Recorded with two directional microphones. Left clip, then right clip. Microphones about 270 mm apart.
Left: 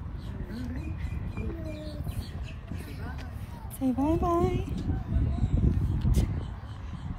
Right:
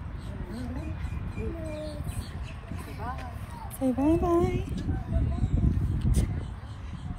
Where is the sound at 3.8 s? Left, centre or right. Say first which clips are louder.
Right 2 dB; centre.